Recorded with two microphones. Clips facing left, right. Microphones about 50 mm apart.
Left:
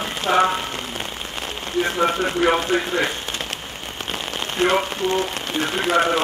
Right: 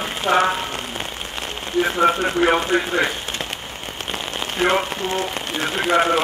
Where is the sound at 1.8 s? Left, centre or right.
Centre.